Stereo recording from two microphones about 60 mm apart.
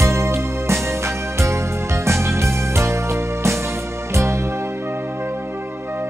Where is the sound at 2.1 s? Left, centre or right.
Right.